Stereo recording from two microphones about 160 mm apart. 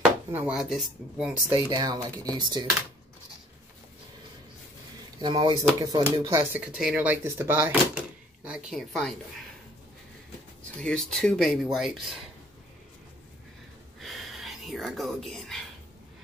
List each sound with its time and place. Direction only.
0.3 s speech: 10° right (ahead or behind)
1.6 s speech: 25° right (ahead or behind)
5.2 s speech: 25° right (ahead or behind); by 9.1 s centre (ahead or behind)
10.8 s speech: 5° left (ahead or behind)
13.9 s a sound: centre (ahead or behind)